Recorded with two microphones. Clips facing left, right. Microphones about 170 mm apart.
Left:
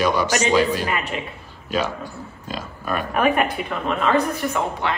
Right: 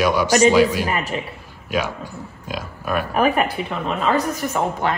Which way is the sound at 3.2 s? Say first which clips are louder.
Even; 35° right (ahead or behind).